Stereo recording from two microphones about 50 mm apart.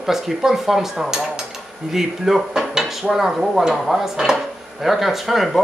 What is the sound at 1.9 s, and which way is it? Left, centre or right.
Dishes, centre.